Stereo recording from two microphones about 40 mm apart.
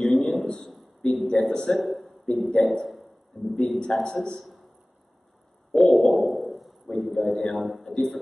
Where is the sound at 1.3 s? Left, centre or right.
Centre.